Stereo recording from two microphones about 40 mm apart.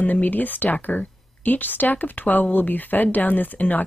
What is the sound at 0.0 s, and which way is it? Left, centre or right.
Speech, left.